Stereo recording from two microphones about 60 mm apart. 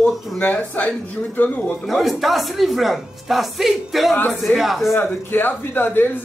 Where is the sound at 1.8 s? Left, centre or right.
Centre.